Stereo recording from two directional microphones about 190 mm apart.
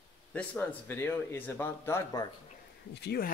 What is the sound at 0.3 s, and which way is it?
A man's voice, 10° left (ahead or behind).